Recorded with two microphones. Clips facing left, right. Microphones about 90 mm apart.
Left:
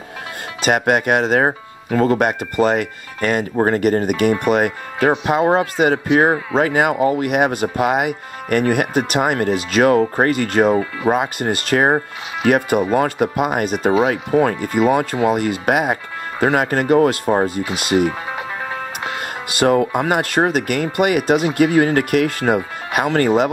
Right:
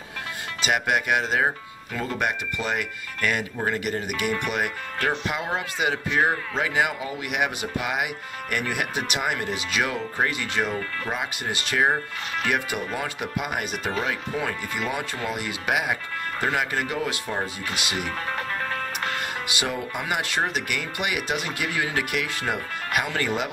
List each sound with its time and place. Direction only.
0.6 s speech: 50° left (ahead or behind)
18.3 s music: 15° left (ahead or behind)
19.4 s speech: 50° left (ahead or behind)